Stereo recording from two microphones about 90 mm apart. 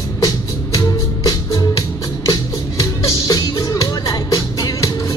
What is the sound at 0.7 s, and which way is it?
Music, 40° left (ahead or behind).